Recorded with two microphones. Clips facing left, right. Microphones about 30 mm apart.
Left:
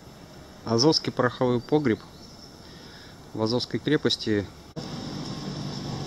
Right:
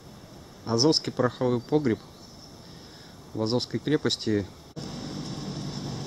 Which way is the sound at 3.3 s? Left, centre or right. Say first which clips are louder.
Left 1 dB; centre.